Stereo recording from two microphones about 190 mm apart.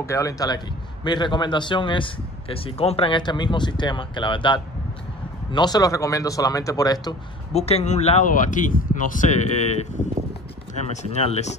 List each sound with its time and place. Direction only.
0.0 s speech: 15° left (ahead or behind)
7.5 s speech: 35° left (ahead or behind)
10.9 s speech: 35° left (ahead or behind)